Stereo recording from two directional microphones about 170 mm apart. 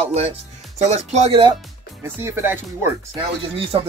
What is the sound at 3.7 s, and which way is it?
Speech, 35° right (ahead or behind).